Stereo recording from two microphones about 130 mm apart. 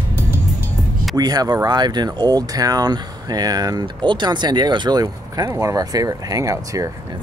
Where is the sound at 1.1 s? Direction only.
30° right (ahead or behind).